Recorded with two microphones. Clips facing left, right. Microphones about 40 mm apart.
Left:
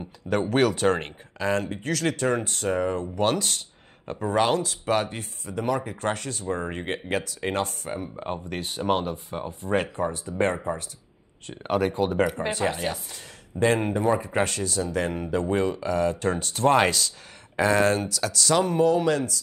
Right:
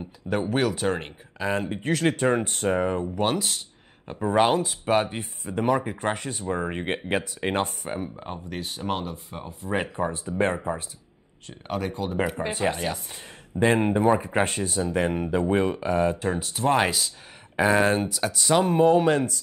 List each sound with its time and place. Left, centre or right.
0.3 s speech: centre
1.4 s speech: centre
1.8 s speech: right
8.2 s speech: centre
9.5 s speech: centre
10.2 s speech: centre
11.5 s speech: left
12.2 s speech: centre
12.7 s speech: centre
13.1 s speech: right
16.2 s speech: centre
17.6 s speech: centre; by 19.4 s right